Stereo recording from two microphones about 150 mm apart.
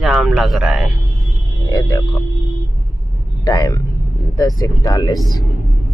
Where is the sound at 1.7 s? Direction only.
25° left (ahead or behind).